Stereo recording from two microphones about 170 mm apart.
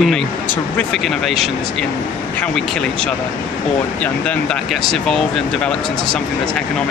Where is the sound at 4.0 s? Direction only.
5° left (ahead or behind).